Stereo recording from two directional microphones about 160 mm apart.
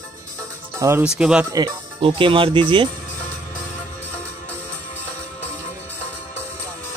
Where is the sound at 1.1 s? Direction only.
5° right (ahead or behind).